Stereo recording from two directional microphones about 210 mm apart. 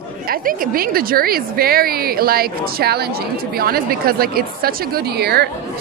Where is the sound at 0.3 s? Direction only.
45° right (ahead or behind).